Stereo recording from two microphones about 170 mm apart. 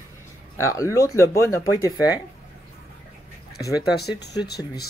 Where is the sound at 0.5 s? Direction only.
20° left (ahead or behind).